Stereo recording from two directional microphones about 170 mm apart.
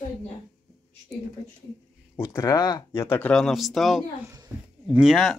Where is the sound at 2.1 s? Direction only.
20° left (ahead or behind).